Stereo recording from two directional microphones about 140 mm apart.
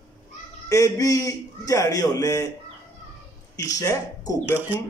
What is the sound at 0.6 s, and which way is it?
Speech, 25° left (ahead or behind).